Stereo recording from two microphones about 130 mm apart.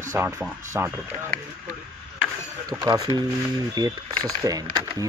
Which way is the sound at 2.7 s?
20° right (ahead or behind).